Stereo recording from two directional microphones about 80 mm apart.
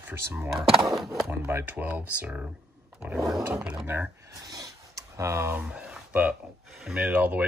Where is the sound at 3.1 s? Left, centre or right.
Centre.